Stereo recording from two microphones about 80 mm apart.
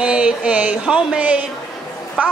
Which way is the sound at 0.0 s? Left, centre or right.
Centre.